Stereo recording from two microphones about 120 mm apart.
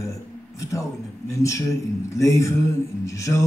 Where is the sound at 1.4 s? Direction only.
25° left (ahead or behind).